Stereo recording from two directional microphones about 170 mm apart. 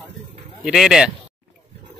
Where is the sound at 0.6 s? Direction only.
5° right (ahead or behind).